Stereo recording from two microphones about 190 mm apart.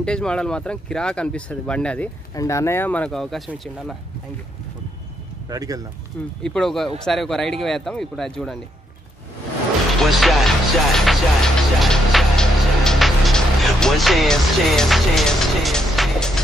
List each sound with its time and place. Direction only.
0.0 s speech: 5° left (ahead or behind)
2.3 s speech: 15° left (ahead or behind); by 3.9 s centre (ahead or behind)
5.5 s speech: 20° right (ahead or behind)
6.4 s speech: 5° left (ahead or behind)
9.9 s speech: centre (ahead or behind)
11.1 s music: centre (ahead or behind)